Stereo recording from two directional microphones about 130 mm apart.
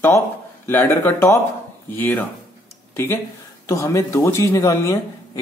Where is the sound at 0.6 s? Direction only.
15° left (ahead or behind).